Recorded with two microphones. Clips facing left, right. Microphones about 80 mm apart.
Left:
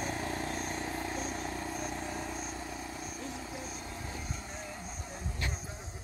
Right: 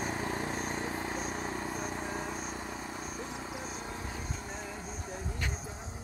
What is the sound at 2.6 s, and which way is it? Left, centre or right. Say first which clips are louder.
Vehicle: right 1 dB; right.